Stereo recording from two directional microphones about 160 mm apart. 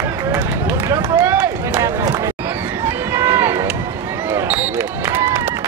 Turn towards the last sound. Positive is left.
turn(degrees=-15)  # may be behind; listen again after turning